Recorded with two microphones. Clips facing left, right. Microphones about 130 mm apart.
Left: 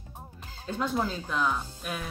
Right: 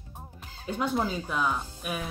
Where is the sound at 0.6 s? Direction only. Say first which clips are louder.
Right 1 dB; 10° right (ahead or behind).